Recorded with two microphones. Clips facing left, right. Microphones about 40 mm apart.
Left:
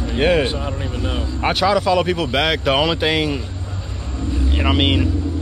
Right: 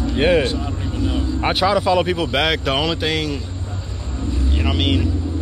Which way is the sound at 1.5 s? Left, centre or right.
Centre.